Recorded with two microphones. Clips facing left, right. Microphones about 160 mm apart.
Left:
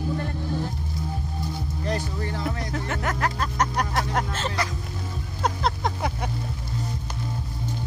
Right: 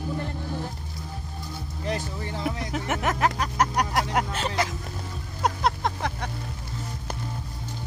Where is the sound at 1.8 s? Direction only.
20° right (ahead or behind).